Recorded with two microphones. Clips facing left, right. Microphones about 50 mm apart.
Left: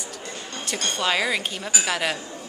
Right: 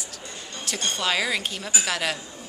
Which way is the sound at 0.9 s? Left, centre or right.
Centre.